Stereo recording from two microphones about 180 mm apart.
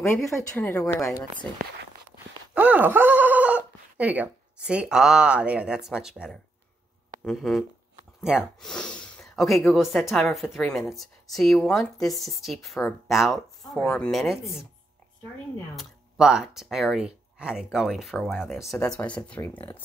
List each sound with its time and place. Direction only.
0.6 s speech: 10° left (ahead or behind)
2.5 s speech: 10° right (ahead or behind)
15.7 s speech: centre (ahead or behind)